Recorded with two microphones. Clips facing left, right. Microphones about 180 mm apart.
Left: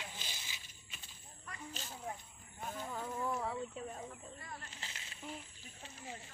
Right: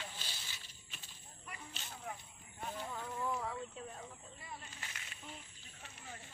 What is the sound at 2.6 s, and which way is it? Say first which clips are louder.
Speech: even; centre (ahead or behind).